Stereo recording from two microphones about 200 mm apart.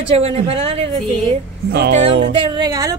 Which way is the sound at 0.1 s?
30° right (ahead or behind).